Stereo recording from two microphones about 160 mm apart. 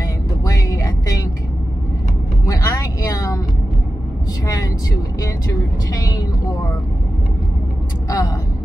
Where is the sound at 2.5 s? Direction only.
25° left (ahead or behind).